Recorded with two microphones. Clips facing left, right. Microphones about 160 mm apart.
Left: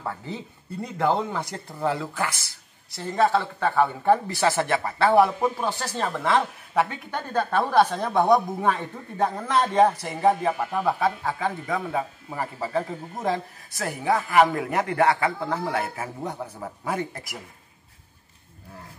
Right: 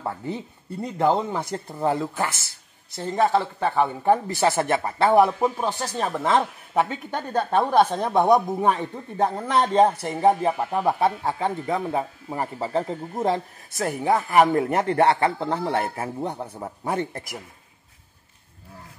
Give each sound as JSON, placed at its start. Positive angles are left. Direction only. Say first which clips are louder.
{"t": 0.9, "sound": "a man's voice", "louder": "right 2 dB", "side_deg": -20}